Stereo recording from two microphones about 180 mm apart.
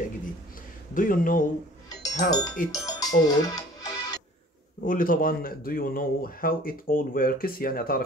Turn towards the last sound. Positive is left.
turn(degrees=55)  # may be behind; listen again after turning